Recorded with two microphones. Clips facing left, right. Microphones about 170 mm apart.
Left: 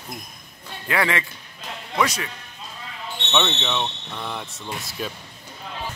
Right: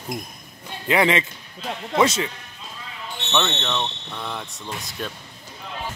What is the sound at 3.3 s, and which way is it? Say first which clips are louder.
Speech: even; centre (ahead or behind).